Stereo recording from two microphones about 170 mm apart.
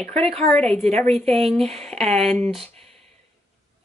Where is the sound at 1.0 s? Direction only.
40° right (ahead or behind).